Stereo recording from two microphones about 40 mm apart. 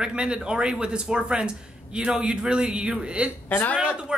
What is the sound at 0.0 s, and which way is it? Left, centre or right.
Speech, right.